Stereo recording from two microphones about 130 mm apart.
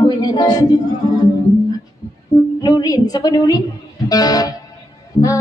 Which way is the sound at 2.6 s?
30° left (ahead or behind).